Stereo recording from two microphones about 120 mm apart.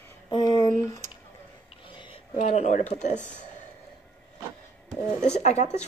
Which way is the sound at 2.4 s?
65° left (ahead or behind).